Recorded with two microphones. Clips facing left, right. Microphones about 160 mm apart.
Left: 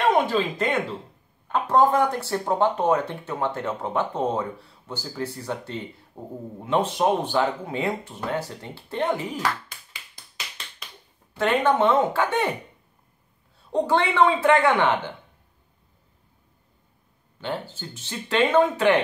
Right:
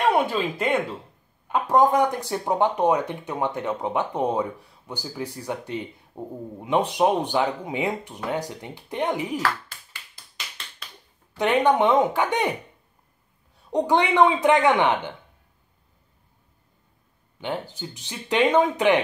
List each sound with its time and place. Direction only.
0.1 s speech: 10° right (ahead or behind)
9.4 s a sound: 15° left (ahead or behind)
11.3 s speech: 15° right (ahead or behind)
13.7 s speech: 15° right (ahead or behind)
17.4 s speech: 15° right (ahead or behind)